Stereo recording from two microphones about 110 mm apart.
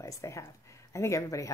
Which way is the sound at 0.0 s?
25° left (ahead or behind).